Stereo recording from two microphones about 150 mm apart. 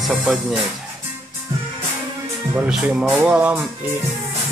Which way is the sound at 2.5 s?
5° right (ahead or behind).